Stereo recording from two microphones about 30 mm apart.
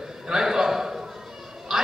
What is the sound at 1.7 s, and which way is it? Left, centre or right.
Quack, centre.